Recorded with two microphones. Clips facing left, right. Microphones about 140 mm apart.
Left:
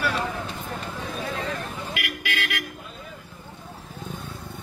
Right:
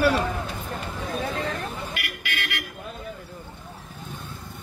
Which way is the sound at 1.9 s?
90° left.